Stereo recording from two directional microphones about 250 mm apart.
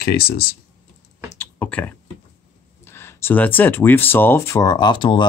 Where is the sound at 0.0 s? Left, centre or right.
Left.